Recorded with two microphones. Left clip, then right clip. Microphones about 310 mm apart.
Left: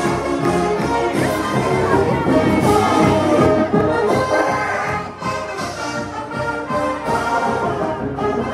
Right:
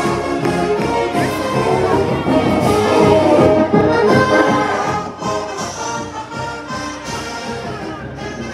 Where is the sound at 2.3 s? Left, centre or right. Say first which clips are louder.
Right 1 dB; centre.